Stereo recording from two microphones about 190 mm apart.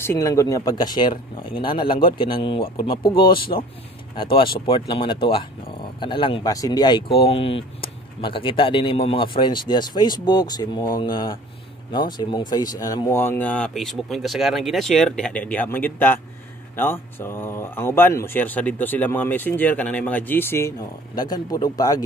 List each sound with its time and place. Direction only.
0.0 s speech: 15° left (ahead or behind)